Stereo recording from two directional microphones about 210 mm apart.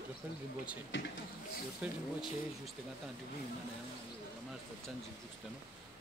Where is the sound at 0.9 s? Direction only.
60° left (ahead or behind).